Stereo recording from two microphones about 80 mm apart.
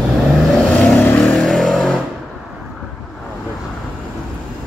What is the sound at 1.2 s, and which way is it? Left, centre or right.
Vehicle, centre.